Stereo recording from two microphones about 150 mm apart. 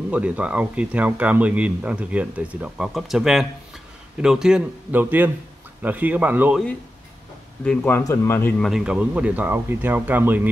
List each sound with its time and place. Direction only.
0.1 s speech: 10° right (ahead or behind)
7.6 s speech: 10° left (ahead or behind)
8.5 s speech: centre (ahead or behind)